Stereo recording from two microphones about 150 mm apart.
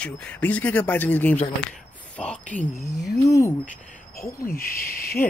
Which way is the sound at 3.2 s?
20° left (ahead or behind).